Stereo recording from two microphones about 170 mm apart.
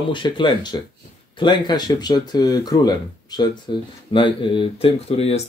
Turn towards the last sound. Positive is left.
turn(degrees=35)  # may be behind; listen again after turning